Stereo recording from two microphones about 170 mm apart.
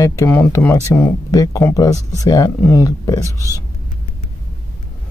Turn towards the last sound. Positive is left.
turn(degrees=20)  # may be behind; listen again after turning